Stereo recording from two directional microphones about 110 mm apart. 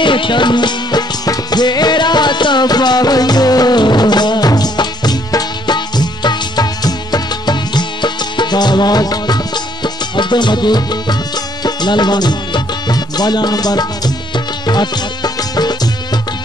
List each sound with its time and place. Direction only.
0.0 s music: 50° left (ahead or behind)